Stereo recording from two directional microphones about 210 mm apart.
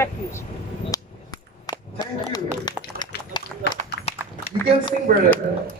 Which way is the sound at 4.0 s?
50° left (ahead or behind).